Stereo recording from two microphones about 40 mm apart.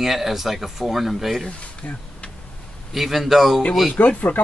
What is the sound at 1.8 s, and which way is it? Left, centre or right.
Speech, left.